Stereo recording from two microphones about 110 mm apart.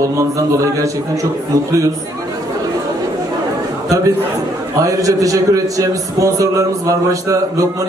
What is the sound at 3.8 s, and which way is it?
A man's voice, 30° right (ahead or behind).